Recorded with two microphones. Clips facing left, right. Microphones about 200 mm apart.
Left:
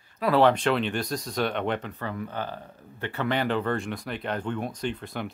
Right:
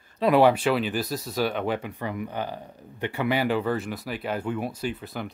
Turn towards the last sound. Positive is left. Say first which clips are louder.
# even
turn(degrees=0)  # may be behind; listen again after turning